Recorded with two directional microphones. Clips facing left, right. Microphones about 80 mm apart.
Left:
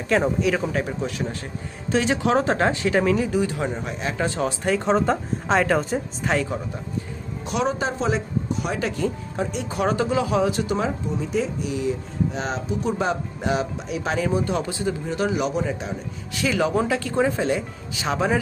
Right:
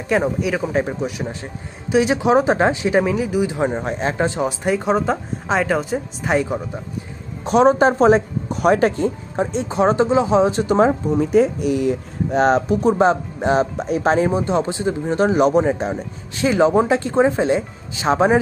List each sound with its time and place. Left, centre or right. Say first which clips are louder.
0.1 s speech: right 1 dB; centre
0.7 s speech: right 5 dB; right
3.5 s speech: right 6 dB; right
4.3 s speech: right 3 dB; centre
6.2 s speech: right 6 dB; centre
7.4 s speech: right 11 dB; right
9.0 s speech: right 4 dB; right
11.1 s speech: right 11 dB; right
12.9 s speech: right 8 dB; right